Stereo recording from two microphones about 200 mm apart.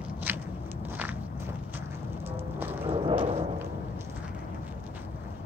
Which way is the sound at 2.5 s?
10° right (ahead or behind).